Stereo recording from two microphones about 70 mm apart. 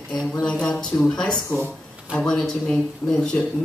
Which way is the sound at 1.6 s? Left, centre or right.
Centre.